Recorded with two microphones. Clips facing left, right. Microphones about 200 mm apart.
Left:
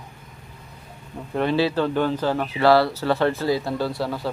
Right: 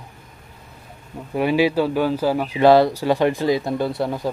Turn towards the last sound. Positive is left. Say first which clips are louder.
# right 3 dB
turn(degrees=-20)  # may be behind; listen again after turning